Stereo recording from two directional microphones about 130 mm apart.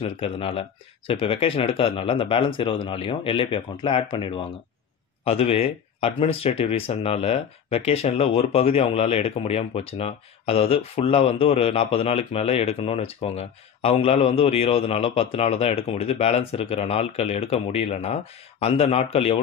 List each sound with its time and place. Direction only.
0.0 s speech: 45° left (ahead or behind)